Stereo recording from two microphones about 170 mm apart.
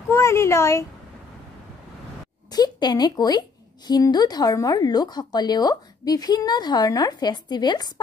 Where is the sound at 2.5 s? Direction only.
25° left (ahead or behind).